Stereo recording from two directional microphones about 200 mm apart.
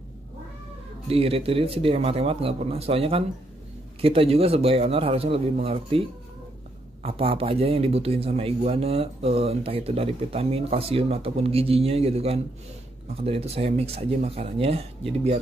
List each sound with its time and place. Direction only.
1.0 s a man's voice: 30° right (ahead or behind)